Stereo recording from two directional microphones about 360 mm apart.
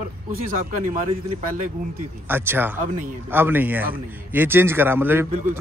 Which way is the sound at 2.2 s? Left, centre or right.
Centre.